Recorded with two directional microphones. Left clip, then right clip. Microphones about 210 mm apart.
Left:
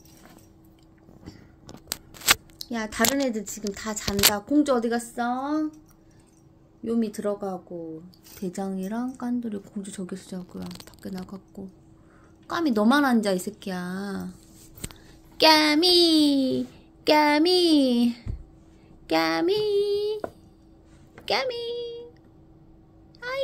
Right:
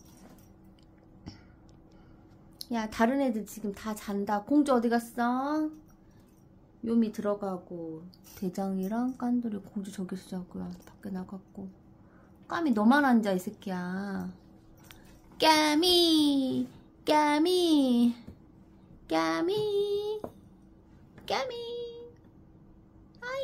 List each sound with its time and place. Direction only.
1.3 s a sound: 5° left (ahead or behind)
2.6 s child singing: 10° left (ahead or behind)
4.5 s a woman's voice: centre (ahead or behind)
6.8 s child singing: 10° left (ahead or behind)
10.9 s speech: 15° left (ahead or behind)
12.4 s child singing: 15° left (ahead or behind)
15.3 s child singing: 15° left (ahead or behind)
19.0 s female singing: 15° left (ahead or behind)
21.3 s a sound: 15° left (ahead or behind)
23.2 s a sound: 15° left (ahead or behind)